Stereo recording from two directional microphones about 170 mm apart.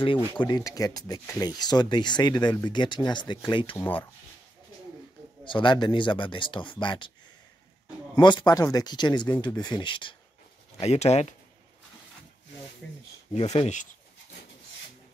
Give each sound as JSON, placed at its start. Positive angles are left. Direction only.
{"t": 0.0, "sound": "speech", "side_deg": 30}
{"t": 5.4, "sound": "speech", "side_deg": 30}
{"t": 8.2, "sound": "speech", "side_deg": 25}
{"t": 10.8, "sound": "speech", "side_deg": 40}
{"t": 12.8, "sound": "speech", "side_deg": 5}
{"t": 13.3, "sound": "speech", "side_deg": 35}